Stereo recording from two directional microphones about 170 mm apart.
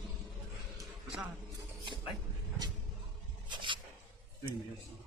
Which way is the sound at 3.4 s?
30° right (ahead or behind).